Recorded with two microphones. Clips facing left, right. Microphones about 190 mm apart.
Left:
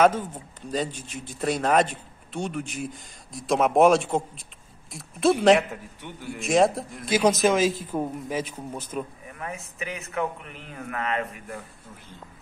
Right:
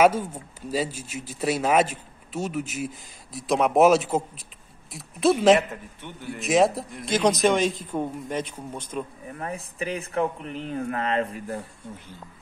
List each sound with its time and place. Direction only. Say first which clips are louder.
0.0 s speech: right 1 dB; 10° right (ahead or behind)
9.3 s speech: right 3 dB; 35° right (ahead or behind)